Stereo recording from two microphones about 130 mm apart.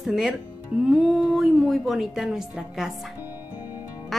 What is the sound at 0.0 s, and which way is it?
A woman's voice, centre (ahead or behind).